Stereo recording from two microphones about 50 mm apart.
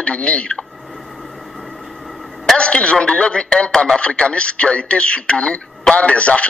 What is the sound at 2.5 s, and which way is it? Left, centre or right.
A man's voice, left.